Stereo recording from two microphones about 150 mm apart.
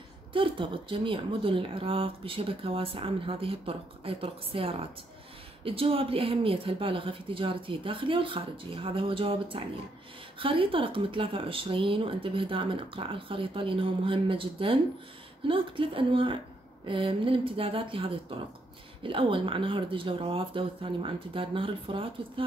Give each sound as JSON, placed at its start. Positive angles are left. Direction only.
{"t": 0.3, "sound": "speech", "side_deg": -35}